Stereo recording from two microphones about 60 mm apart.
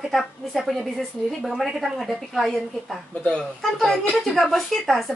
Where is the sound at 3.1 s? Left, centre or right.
Centre.